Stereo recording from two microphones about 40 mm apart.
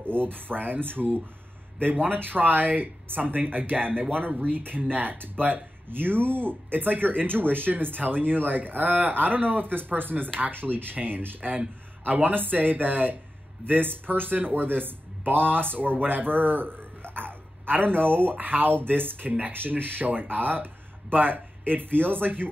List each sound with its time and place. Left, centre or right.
0.0 s speech: right